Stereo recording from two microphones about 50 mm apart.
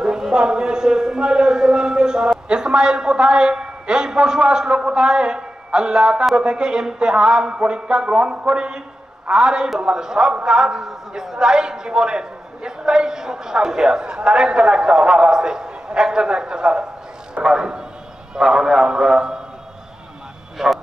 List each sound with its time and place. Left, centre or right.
0.0 s a man's voice: centre
20.5 s speech: centre